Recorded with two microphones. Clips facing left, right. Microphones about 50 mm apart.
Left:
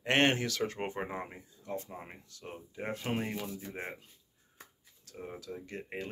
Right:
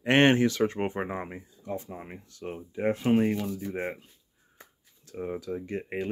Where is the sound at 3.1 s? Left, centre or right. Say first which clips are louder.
Right 12 dB; centre.